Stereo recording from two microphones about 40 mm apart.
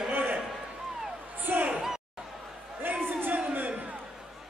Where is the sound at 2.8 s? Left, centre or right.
Right.